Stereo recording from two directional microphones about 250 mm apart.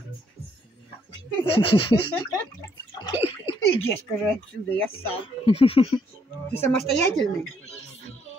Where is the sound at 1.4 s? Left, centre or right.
Left.